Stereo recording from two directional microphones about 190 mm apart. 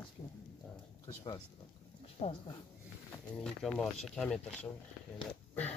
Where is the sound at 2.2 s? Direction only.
35° left (ahead or behind).